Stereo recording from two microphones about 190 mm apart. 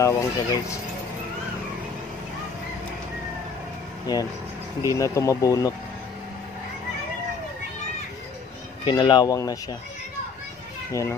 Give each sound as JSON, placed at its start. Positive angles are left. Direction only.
{"t": 0.0, "sound": "speech", "side_deg": 15}
{"t": 4.1, "sound": "speech", "side_deg": 20}
{"t": 8.8, "sound": "speech", "side_deg": 25}
{"t": 10.9, "sound": "a child's voice", "side_deg": 15}